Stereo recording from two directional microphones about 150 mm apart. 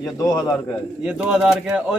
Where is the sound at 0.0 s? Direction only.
25° left (ahead or behind).